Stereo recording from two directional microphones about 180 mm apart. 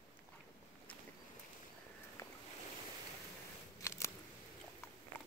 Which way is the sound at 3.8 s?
15° left (ahead or behind).